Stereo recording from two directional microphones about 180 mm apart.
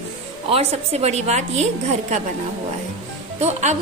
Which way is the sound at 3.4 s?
40° right (ahead or behind).